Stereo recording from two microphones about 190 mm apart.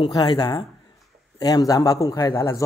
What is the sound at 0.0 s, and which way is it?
A man's voice, 25° left (ahead or behind).